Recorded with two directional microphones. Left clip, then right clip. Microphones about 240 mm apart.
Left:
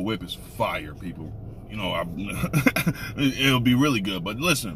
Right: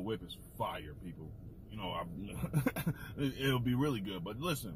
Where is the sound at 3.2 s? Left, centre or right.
Centre.